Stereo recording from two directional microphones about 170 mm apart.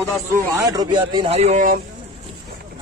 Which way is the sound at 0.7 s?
25° right (ahead or behind).